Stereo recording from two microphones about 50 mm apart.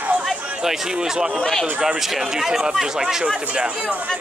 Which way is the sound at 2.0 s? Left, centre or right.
Centre.